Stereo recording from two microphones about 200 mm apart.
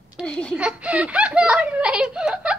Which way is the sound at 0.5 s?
5° right (ahead or behind).